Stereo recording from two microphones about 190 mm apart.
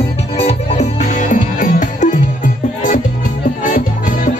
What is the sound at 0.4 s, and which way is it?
Music, 35° left (ahead or behind).